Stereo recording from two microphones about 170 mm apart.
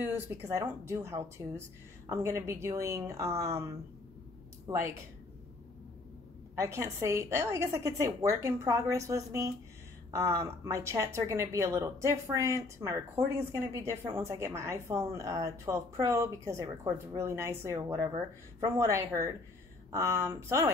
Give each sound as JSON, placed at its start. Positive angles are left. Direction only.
{"t": 0.0, "sound": "speech", "side_deg": -15}
{"t": 6.6, "sound": "speech", "side_deg": -15}